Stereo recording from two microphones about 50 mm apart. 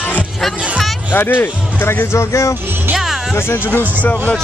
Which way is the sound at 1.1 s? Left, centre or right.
Left.